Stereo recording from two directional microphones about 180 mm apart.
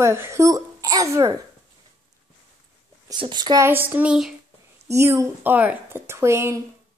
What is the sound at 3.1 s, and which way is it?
A woman's voice, 25° right (ahead or behind).